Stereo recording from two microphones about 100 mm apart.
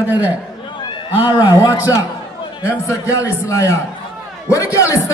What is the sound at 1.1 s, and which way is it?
Speech, 20° right (ahead or behind).